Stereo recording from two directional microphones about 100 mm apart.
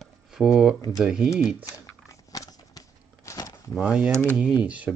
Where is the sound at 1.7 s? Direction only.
35° left (ahead or behind).